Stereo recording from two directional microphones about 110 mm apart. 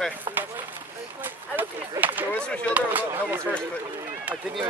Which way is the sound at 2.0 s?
15° right (ahead or behind).